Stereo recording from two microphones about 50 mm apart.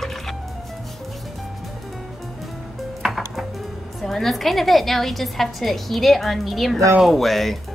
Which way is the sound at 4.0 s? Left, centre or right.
Centre.